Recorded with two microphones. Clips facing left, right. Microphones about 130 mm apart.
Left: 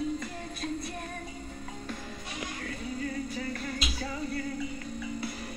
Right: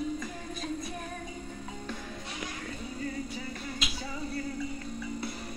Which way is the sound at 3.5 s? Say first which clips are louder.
Left 3 dB; 25° right (ahead or behind).